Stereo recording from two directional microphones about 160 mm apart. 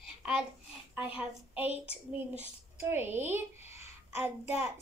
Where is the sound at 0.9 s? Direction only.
10° right (ahead or behind).